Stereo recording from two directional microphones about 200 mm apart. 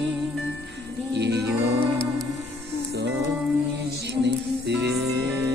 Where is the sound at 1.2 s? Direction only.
60° right (ahead or behind).